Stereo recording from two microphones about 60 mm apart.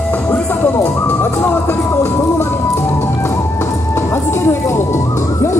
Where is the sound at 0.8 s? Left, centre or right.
Left.